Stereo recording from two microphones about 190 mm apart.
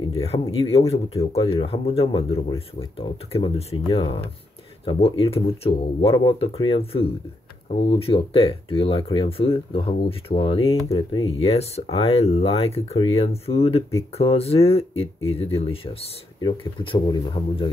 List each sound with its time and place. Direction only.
0.0 s speech: 30° left (ahead or behind)